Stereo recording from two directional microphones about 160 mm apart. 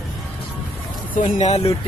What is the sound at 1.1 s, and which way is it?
Speech, 50° left (ahead or behind).